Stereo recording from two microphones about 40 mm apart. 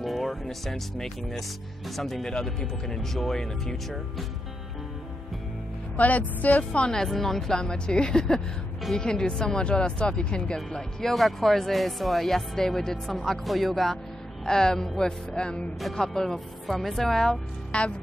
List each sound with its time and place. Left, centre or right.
0.0 s speech: centre
5.9 s speech: left
6.8 s speech: centre
7.1 s speech: centre
7.6 s speech: left
11.1 s speech: centre
14.4 s speech: centre
15.8 s speech: centre
17.7 s speech: left